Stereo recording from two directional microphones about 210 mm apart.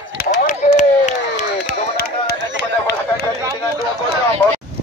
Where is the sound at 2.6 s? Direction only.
55° left (ahead or behind).